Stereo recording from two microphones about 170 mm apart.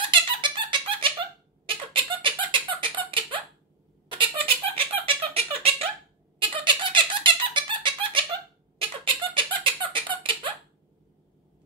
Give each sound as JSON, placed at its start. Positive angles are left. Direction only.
{"t": 0.1, "sound": "squeak", "side_deg": -30}
{"t": 3.1, "sound": "a sound", "side_deg": -30}
{"t": 4.1, "sound": "giggle", "side_deg": -30}
{"t": 4.7, "sound": "squeak", "side_deg": -35}